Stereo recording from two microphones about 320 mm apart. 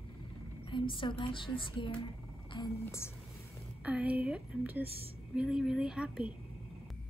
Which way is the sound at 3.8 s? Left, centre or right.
Centre.